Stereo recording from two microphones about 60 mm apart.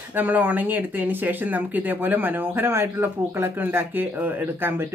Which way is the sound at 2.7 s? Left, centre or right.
Right.